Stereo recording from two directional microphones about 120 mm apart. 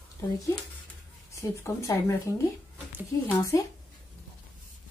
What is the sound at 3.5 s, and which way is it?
Speech, 25° left (ahead or behind).